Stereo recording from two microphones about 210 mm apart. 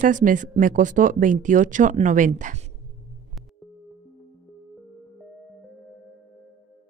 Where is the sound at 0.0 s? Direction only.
40° right (ahead or behind).